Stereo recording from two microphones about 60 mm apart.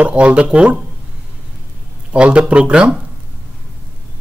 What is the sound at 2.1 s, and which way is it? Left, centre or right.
Speech, centre.